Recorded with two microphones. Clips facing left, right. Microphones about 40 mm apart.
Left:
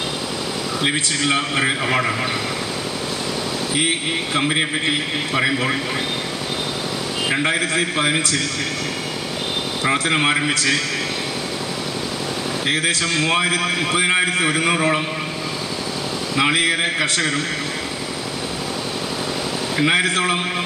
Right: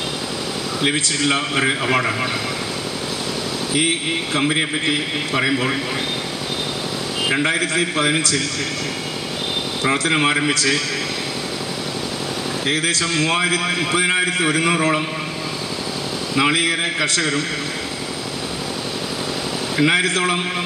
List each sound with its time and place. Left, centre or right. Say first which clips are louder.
0.8 s a man's voice: right 1 dB; centre
4.4 s a man's voice: even; centre
7.2 s a man's voice: right 1 dB; centre
9.8 s a man's voice: even; centre
13.1 s a man's voice: even; centre
16.5 s a man's voice: left 1 dB; left
19.8 s a man's voice: right 1 dB; centre